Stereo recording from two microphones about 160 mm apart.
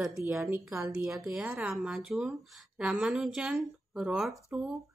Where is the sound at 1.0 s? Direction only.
5° right (ahead or behind).